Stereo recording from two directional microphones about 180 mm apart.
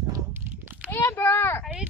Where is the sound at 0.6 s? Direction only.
10° right (ahead or behind).